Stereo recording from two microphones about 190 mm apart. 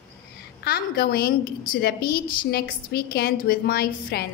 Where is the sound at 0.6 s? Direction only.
55° left (ahead or behind).